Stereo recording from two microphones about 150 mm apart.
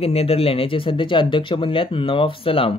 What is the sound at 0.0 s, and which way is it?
Speech, 40° left (ahead or behind).